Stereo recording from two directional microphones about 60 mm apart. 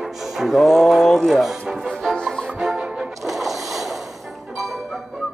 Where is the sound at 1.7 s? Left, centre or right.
Centre.